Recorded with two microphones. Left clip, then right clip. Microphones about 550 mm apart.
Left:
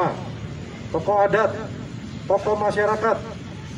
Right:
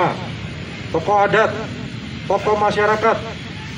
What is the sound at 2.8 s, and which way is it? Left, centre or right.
Speech, left.